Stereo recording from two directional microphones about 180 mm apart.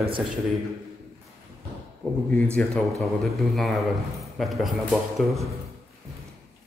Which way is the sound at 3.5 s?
Centre (ahead or behind).